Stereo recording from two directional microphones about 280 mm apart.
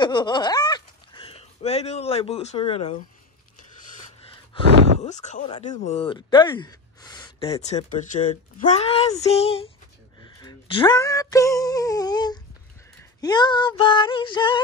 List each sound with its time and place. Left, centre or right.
0.0 s speech: centre
4.5 s speech: centre